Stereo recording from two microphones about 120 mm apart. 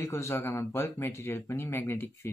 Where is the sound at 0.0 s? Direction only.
20° left (ahead or behind).